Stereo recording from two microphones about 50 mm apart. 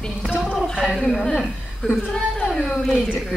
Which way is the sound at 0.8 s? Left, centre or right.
Centre.